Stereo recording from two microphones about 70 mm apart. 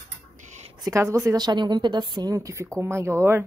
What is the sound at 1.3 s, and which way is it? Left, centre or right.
A woman's voice, right.